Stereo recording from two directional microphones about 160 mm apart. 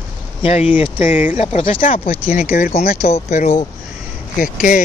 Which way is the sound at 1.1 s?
10° right (ahead or behind).